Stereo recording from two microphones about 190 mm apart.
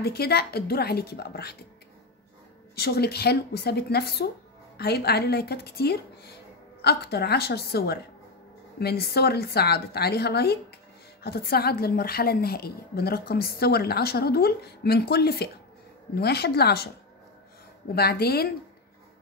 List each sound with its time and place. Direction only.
0.0 s a woman's voice: 55° left (ahead or behind)
2.7 s a woman's voice: 55° left (ahead or behind)
17.9 s a woman's voice: 55° left (ahead or behind)